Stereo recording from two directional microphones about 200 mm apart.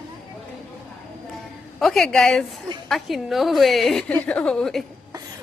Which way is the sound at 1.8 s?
Centre (ahead or behind).